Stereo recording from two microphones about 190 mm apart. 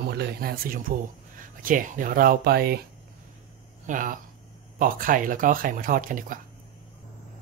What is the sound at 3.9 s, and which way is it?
Speech, 45° right (ahead or behind).